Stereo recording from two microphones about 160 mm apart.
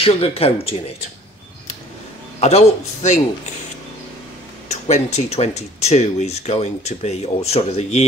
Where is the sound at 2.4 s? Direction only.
40° left (ahead or behind).